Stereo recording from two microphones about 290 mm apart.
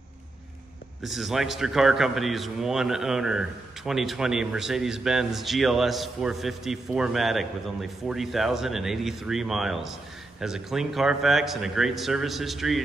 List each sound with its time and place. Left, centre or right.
1.0 s a man's voice: centre